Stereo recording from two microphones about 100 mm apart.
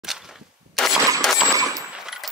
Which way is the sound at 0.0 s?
5° right (ahead or behind).